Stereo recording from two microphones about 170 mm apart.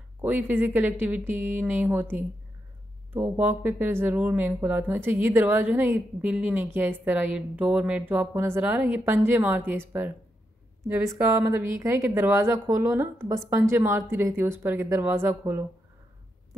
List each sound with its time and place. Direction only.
0.2 s speech: 10° right (ahead or behind)